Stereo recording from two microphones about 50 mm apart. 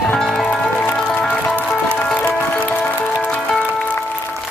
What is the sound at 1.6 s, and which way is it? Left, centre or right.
Music, left.